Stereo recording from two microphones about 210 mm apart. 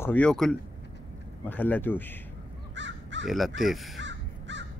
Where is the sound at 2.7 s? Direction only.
60° right (ahead or behind).